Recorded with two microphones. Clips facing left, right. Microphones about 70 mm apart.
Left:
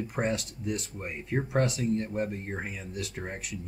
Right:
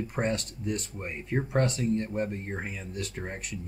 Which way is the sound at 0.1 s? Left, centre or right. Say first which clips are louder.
Even; centre.